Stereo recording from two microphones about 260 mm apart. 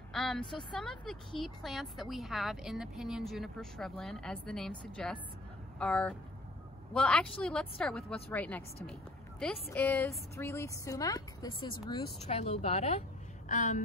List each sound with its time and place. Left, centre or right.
0.1 s vehicle: centre
0.7 s a woman's voice: centre; by 13.8 s left